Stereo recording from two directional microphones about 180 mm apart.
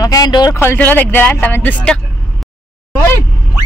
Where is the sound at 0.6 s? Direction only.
10° left (ahead or behind).